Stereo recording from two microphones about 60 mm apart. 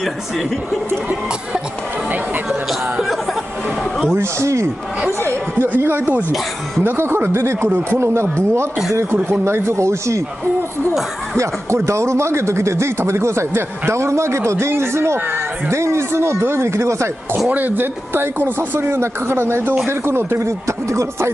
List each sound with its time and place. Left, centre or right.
4.1 s speech: right
5.2 s chatter: right
5.8 s speech: right
11.3 s speech: right
17.5 s speech: right